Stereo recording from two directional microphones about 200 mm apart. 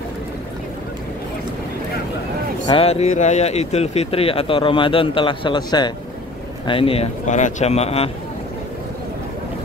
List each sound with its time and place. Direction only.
2.6 s speech: 30° left (ahead or behind)